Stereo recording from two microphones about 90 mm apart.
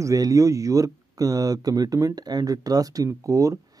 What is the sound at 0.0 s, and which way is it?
Speech, 40° right (ahead or behind).